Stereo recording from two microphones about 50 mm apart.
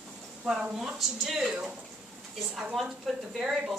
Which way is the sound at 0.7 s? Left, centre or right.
Centre.